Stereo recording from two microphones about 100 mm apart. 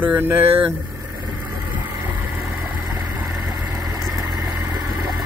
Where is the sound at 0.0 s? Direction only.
20° right (ahead or behind).